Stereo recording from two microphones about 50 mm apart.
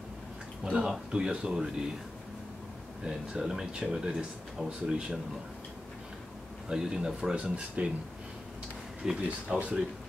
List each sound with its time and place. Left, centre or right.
0.7 s speech: centre
3.0 s speech: centre
6.7 s speech: centre
9.0 s speech: centre